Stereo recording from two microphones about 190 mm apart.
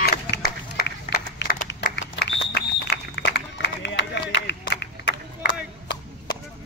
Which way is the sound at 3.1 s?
65° left (ahead or behind).